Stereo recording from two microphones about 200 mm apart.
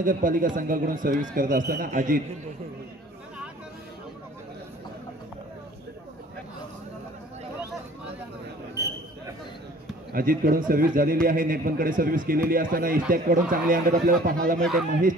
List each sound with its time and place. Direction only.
0.0 s a man's voice: 40° right (ahead or behind)
10.1 s a man's voice: 45° right (ahead or behind)
14.6 s speech: centre (ahead or behind)
14.9 s a man's voice: 40° right (ahead or behind)